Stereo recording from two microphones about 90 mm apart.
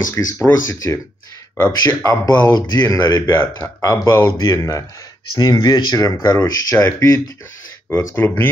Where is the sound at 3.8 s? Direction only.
35° left (ahead or behind).